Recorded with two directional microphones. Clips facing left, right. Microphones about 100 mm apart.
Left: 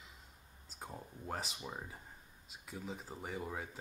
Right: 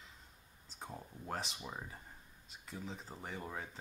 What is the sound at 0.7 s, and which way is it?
Speech, 5° left (ahead or behind).